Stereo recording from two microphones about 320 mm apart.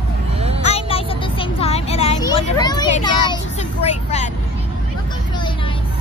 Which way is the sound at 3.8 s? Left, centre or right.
Left.